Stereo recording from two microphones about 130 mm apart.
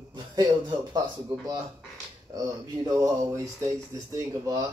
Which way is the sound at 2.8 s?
25° right (ahead or behind).